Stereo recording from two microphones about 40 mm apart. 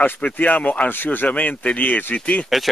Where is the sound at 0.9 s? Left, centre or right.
Left.